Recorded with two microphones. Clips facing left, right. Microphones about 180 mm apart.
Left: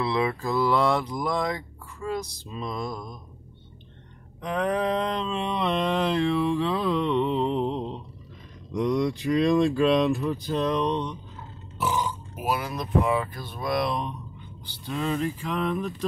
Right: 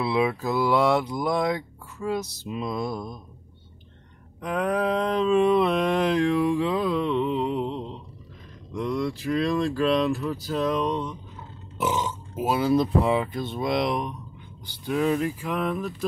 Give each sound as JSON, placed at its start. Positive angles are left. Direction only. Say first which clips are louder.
{"t": 0.0, "sound": "mantra", "louder": "right 2 dB", "side_deg": -10}
{"t": 2.4, "sound": "mantra", "louder": "right 3 dB", "side_deg": -15}
{"t": 4.4, "sound": "mantra", "louder": "right 1 dB", "side_deg": -5}
{"t": 8.7, "sound": "speech", "louder": "left 3 dB", "side_deg": 0}
{"t": 11.8, "sound": "speech", "louder": "right 1 dB", "side_deg": -20}
{"t": 14.9, "sound": "mantra", "louder": "right 4 dB", "side_deg": -10}